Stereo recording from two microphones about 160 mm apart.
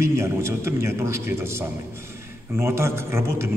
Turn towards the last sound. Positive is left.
turn(degrees=-15)  # may be behind; listen again after turning